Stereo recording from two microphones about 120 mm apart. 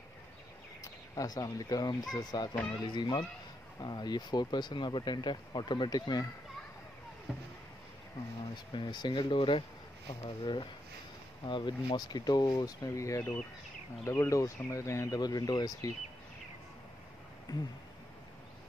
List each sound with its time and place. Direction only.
1.1 s speech: 30° left (ahead or behind)
7.3 s speech: 5° right (ahead or behind)
8.7 s speech: 40° left (ahead or behind)
17.5 s speech: 30° left (ahead or behind)